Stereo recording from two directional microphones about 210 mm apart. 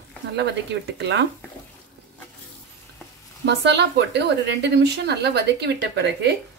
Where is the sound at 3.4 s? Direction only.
55° right (ahead or behind).